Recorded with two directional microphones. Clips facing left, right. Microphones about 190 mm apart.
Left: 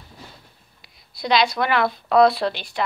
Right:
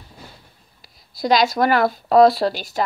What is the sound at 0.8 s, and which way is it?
A woman's voice, 40° right (ahead or behind).